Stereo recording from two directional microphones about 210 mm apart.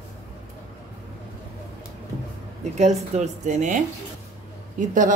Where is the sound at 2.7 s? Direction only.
35° right (ahead or behind).